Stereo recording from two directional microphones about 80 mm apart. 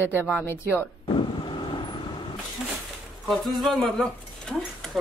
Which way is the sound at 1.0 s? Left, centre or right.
Left.